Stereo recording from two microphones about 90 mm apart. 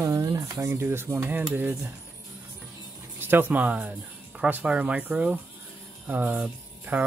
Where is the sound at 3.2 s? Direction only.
25° right (ahead or behind).